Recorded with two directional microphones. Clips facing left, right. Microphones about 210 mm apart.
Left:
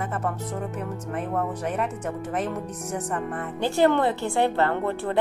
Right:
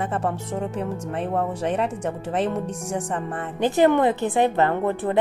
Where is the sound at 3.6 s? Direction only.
15° right (ahead or behind).